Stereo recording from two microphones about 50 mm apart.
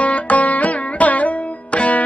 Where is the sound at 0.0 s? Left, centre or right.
Left.